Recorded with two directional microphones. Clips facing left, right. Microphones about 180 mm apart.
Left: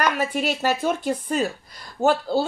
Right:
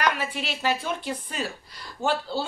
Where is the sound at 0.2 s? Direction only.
45° left (ahead or behind).